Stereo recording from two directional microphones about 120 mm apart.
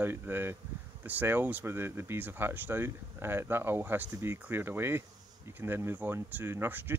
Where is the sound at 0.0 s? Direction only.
20° right (ahead or behind).